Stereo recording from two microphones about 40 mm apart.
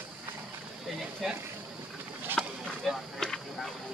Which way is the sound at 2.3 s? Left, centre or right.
Right.